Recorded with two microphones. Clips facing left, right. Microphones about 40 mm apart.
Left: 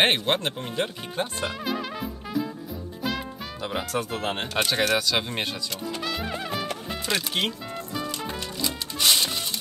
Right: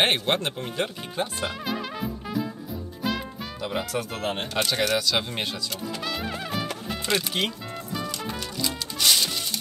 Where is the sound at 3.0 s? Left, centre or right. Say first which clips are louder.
Right 1 dB; centre.